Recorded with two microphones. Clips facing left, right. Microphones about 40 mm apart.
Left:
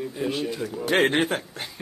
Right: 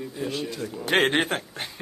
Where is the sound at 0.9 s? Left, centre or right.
Right.